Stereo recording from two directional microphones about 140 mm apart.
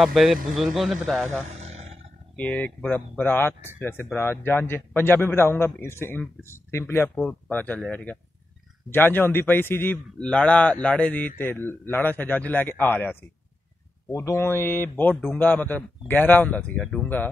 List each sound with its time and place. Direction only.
0.0 s speech: centre (ahead or behind)
1.5 s roar: 50° right (ahead or behind)
2.3 s a man's voice: 10° left (ahead or behind)